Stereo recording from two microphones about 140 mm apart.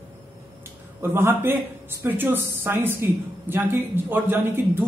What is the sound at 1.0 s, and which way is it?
A woman's voice, 15° right (ahead or behind).